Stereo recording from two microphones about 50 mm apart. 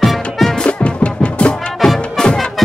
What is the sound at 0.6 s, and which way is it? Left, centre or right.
Music, left.